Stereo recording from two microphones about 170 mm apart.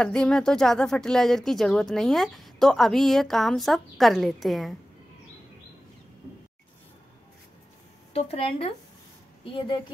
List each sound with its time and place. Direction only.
0.0 s speech: 5° left (ahead or behind)
8.1 s a woman's voice: 35° left (ahead or behind)